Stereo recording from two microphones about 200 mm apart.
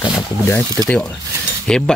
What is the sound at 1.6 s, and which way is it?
Speech, 5° left (ahead or behind).